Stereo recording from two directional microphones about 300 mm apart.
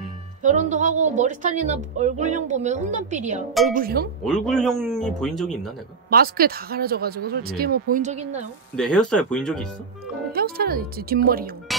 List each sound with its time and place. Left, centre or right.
0.4 s a woman's voice: right
4.2 s a man's voice: centre
6.0 s a woman's voice: right
8.7 s a man's voice: centre
10.3 s speech: right